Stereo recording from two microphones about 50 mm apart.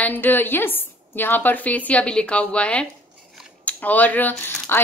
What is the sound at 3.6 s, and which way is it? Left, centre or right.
Speech, left.